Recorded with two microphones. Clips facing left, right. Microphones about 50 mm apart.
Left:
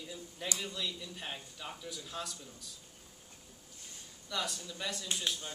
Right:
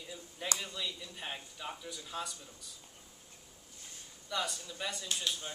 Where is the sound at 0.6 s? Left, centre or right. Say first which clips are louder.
Left 1 dB; centre.